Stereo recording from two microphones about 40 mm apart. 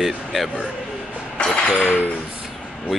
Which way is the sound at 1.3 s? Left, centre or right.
Left.